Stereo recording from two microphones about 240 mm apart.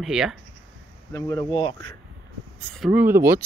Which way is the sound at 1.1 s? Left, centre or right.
Centre.